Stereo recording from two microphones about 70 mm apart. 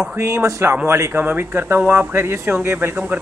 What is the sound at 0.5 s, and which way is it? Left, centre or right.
Speech, right.